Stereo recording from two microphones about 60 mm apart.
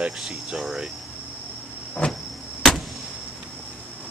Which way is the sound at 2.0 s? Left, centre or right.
Centre.